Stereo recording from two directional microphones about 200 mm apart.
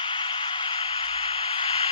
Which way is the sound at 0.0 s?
25° left (ahead or behind).